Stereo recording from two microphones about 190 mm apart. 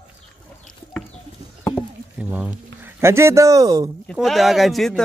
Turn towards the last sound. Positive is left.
turn(degrees=0)  # may be behind; listen again after turning